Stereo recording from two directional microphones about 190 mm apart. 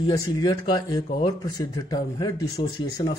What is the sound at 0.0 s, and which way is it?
Speech, 20° left (ahead or behind).